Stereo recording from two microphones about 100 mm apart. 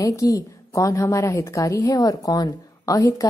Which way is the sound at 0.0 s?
35° left (ahead or behind).